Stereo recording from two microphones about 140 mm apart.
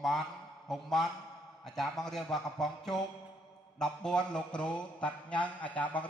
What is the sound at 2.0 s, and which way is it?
A man's voice, centre (ahead or behind).